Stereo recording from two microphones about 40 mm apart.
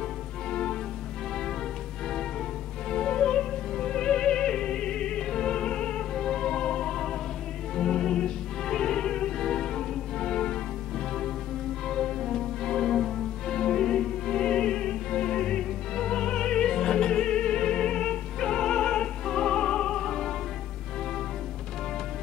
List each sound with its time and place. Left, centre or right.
0.5 s music: centre
2.9 s music: centre
11.9 s music: centre